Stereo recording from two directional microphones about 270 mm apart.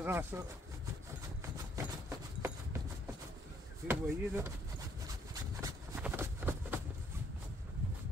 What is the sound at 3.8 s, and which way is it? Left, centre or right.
Speech, centre.